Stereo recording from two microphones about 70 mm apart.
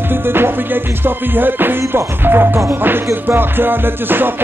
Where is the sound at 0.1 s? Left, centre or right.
Right.